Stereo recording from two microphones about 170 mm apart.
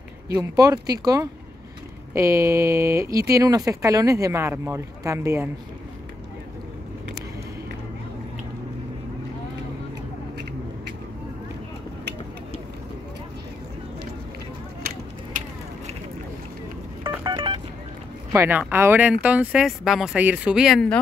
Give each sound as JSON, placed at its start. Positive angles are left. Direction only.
{"t": 0.3, "sound": "speech", "side_deg": -20}
{"t": 17.0, "sound": "telephone dialing", "side_deg": -25}
{"t": 18.3, "sound": "speech", "side_deg": -15}